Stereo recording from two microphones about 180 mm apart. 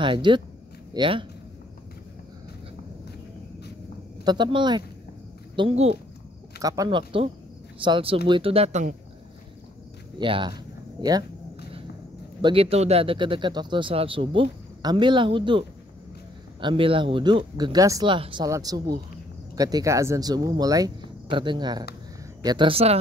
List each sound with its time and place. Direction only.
0.0 s speech: 25° right (ahead or behind)
4.2 s speech: 25° right (ahead or behind)
5.6 s speech: 35° right (ahead or behind)
6.6 s speech: 20° right (ahead or behind); by 8.9 s 40° right (ahead or behind)
10.1 s speech: 25° right (ahead or behind)
12.4 s speech: 30° right (ahead or behind)